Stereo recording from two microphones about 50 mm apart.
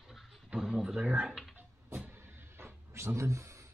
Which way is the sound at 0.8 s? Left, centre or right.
Right.